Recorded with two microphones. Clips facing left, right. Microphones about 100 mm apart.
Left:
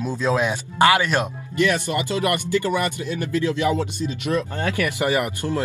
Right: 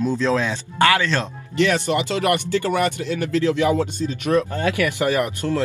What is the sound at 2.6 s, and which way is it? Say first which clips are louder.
Speech: right 2 dB; 50° right (ahead or behind).